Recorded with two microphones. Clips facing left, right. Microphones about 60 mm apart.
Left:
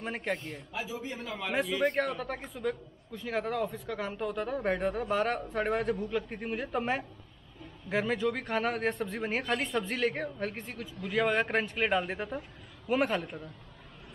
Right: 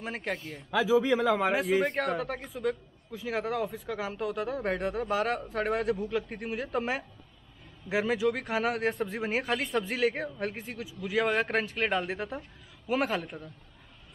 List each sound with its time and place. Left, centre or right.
0.0 s speech: centre
0.7 s a man's voice: right
1.8 s speech: centre